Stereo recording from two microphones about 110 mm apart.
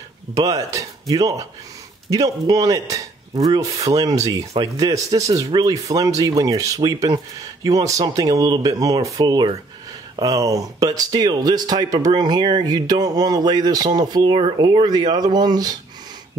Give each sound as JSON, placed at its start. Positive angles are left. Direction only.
{"t": 0.3, "sound": "speech", "side_deg": -30}